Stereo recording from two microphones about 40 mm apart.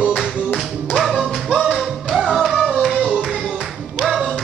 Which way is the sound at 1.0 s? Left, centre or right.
Centre.